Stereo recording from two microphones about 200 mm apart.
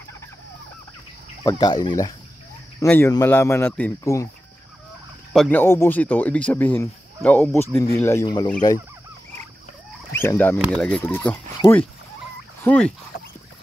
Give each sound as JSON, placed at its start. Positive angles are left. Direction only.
{"t": 1.4, "sound": "speech", "side_deg": 20}
{"t": 5.3, "sound": "speech", "side_deg": 5}
{"t": 10.1, "sound": "speech", "side_deg": 10}